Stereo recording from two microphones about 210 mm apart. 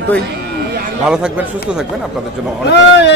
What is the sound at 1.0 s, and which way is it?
Speech, 5° right (ahead or behind).